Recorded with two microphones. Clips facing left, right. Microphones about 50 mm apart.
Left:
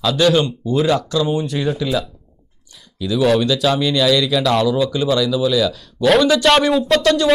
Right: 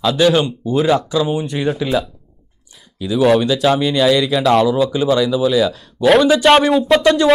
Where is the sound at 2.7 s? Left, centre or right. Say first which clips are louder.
Right 1 dB; centre.